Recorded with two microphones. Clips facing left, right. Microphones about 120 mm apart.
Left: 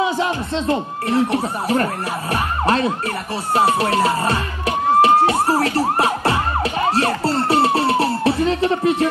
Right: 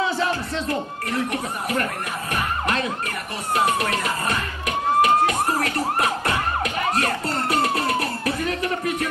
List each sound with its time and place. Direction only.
0.0 s speech: 20° left (ahead or behind)
2.3 s emergency vehicle: 35° left (ahead or behind)
3.5 s music: 30° left (ahead or behind)